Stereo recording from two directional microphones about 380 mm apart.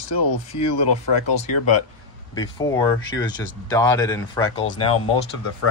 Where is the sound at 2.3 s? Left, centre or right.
Centre.